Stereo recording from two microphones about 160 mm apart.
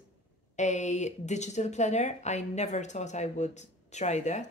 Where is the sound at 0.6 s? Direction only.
45° left (ahead or behind).